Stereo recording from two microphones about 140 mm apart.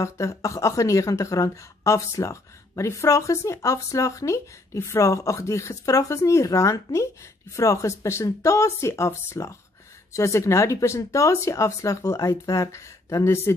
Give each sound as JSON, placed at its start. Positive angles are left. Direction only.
{"t": 0.0, "sound": "speech", "side_deg": 20}